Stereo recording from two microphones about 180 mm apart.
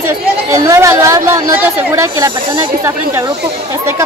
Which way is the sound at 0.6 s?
15° right (ahead or behind).